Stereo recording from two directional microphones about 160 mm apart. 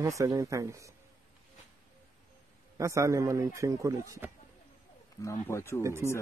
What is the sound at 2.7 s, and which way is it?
Speech, 20° right (ahead or behind).